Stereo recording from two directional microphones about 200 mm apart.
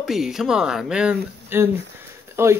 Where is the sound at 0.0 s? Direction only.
Centre (ahead or behind).